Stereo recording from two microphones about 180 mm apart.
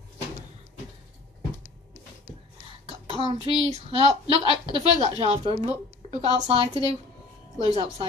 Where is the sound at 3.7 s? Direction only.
35° right (ahead or behind).